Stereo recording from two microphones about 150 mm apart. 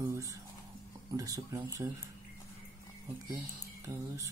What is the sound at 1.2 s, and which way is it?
Speech, 20° right (ahead or behind).